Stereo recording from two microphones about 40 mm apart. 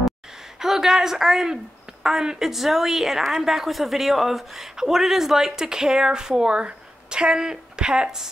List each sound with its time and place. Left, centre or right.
0.6 s a woman's voice: centre